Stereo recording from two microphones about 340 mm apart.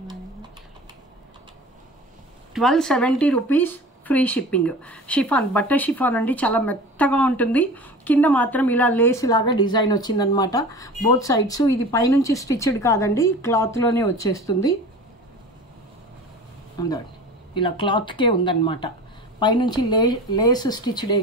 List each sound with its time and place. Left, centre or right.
2.5 s speech: centre
16.8 s speech: centre